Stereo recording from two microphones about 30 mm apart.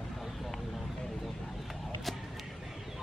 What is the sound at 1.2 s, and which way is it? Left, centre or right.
Arrow, centre.